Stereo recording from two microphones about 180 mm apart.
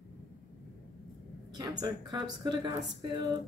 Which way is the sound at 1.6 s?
20° right (ahead or behind).